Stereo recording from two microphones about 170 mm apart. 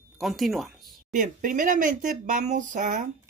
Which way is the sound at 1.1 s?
50° right (ahead or behind).